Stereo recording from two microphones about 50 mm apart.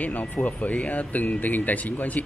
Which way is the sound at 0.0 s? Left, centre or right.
Left.